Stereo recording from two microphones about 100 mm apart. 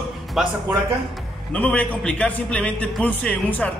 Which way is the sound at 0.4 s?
5° right (ahead or behind).